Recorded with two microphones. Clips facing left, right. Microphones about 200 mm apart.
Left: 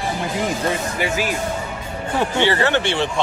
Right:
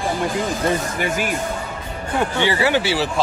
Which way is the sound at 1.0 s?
50° right (ahead or behind).